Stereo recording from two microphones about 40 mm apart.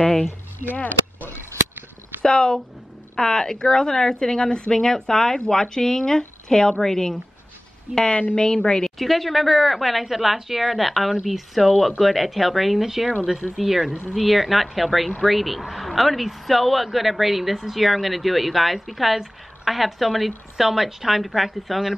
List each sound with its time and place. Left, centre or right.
0.6 s speech: left
2.2 s a woman's voice: left
4.7 s speech: centre
8.1 s a woman's voice: left
8.6 s a woman's voice: centre
8.9 s speech: centre